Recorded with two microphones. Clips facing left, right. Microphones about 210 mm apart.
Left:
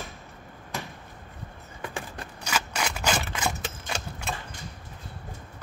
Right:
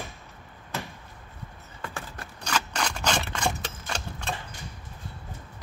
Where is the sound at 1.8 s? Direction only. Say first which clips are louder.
Left 2 dB; 15° left (ahead or behind).